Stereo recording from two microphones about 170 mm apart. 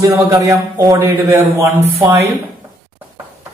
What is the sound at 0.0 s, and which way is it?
A man's voice, 20° right (ahead or behind).